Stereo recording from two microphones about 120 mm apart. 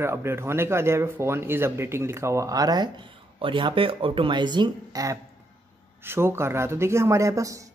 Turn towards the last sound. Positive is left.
turn(degrees=-25)  # may be behind; listen again after turning